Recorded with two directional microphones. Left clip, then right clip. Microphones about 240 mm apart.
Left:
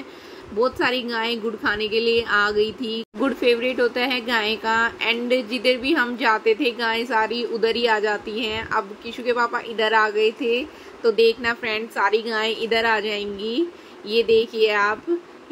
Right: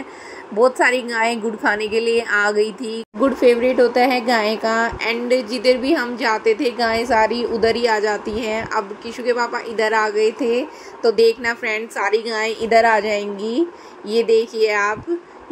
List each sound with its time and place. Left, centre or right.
0.6 s a woman's voice: centre
1.8 s speech: right
2.2 s a woman's voice: centre
2.5 s speech: right
3.2 s a woman's voice: centre